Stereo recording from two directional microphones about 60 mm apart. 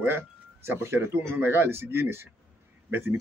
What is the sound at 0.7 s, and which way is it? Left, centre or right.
Speech, right.